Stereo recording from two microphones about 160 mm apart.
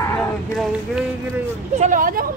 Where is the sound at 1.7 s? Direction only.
55° right (ahead or behind).